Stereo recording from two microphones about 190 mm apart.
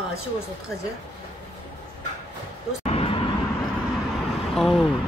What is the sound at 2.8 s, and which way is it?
Vehicle, 30° left (ahead or behind).